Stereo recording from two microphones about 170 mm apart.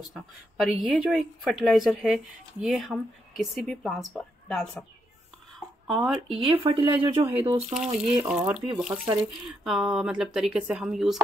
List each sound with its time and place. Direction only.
0.1 s a woman's voice: centre (ahead or behind)
5.9 s a woman's voice: centre (ahead or behind)
6.4 s speech: 30° right (ahead or behind)
7.7 s a woman's voice: 5° right (ahead or behind)